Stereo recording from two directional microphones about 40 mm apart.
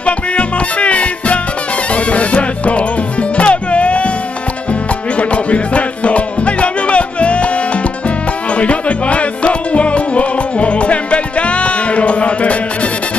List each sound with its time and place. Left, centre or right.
0.0 s music: left
5.1 s music: left